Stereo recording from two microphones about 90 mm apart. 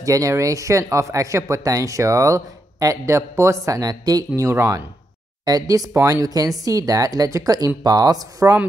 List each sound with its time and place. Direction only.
0.0 s speech: 40° right (ahead or behind)